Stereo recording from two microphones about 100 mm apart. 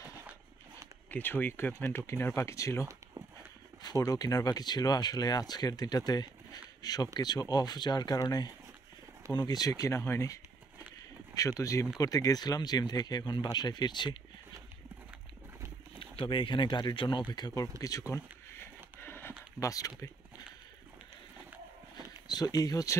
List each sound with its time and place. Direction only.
1.1 s speech: 20° left (ahead or behind); by 14.1 s 45° left (ahead or behind)
16.0 s speech: 55° left (ahead or behind)
17.3 s speech: 40° left (ahead or behind)
18.6 s printer: 20° left (ahead or behind)
19.6 s speech: 35° left (ahead or behind)
22.3 s speech: 40° left (ahead or behind)